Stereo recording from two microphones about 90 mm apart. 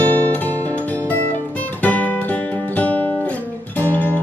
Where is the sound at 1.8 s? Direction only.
20° left (ahead or behind).